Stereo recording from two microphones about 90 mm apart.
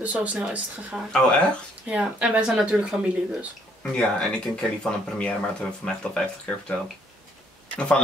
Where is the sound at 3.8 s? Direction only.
10° left (ahead or behind).